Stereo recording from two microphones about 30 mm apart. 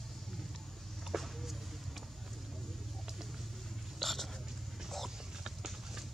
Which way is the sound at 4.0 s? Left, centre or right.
Centre.